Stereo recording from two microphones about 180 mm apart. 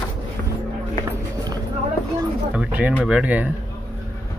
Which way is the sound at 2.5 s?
10° right (ahead or behind).